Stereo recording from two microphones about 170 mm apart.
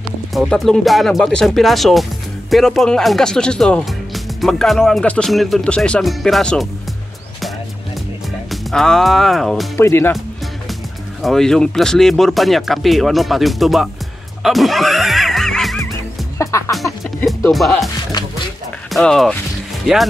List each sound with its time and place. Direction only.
0.3 s speech: centre (ahead or behind)
8.5 s speech: centre (ahead or behind)
9.8 s speech: 15° left (ahead or behind)
11.2 s speech: 5° left (ahead or behind)
14.4 s music: centre (ahead or behind)
16.3 s music: 15° left (ahead or behind)
16.7 s music: centre (ahead or behind)
17.5 s speech: centre (ahead or behind)
18.1 s music: 20° left (ahead or behind)
18.9 s speech: centre (ahead or behind)